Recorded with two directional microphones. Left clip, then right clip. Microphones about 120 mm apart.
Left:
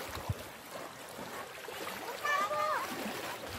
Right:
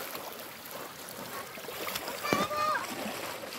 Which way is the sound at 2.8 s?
90° right.